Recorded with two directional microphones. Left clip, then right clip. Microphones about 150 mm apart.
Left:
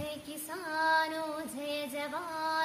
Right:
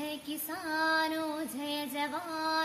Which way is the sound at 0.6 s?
20° left (ahead or behind).